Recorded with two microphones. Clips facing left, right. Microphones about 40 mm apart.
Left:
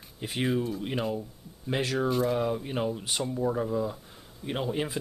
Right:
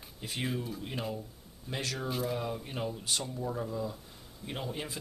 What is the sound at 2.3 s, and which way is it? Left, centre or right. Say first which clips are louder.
Speech: left 7 dB; centre.